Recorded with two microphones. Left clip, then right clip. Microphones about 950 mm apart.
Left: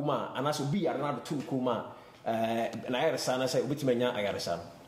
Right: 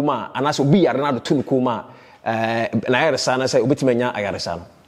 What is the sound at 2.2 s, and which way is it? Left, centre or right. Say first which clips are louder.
A man's voice: right 10 dB; right.